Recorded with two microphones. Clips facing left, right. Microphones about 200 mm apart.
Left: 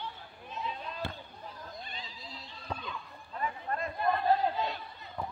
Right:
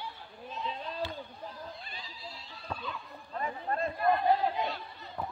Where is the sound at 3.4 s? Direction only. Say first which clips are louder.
Right 2 dB; 35° right (ahead or behind).